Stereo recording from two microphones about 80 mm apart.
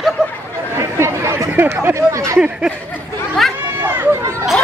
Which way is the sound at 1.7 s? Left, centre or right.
Right.